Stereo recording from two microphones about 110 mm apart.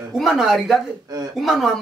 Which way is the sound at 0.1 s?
Centre (ahead or behind).